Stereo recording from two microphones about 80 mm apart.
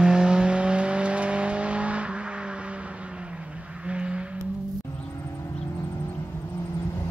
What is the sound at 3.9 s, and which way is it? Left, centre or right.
Vehicle, centre.